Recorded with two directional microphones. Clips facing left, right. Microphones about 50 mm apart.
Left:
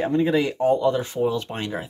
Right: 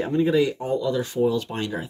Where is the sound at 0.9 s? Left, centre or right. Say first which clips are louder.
Right 1 dB; left.